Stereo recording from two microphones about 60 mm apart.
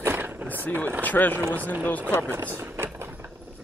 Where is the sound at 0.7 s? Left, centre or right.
Left.